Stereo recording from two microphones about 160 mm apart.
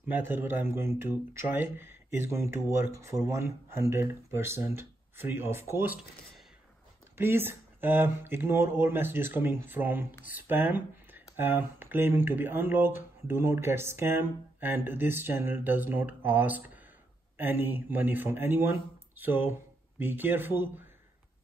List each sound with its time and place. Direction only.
0.1 s speech: 15° right (ahead or behind)
7.2 s speech: 15° right (ahead or behind)